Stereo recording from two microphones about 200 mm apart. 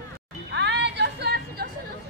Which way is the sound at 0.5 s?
60° right (ahead or behind).